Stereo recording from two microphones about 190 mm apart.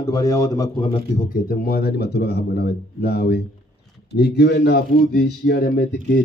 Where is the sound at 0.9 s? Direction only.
40° left (ahead or behind).